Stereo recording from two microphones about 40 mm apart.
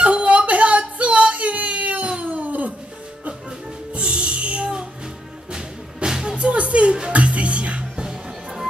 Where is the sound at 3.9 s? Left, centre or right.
Right.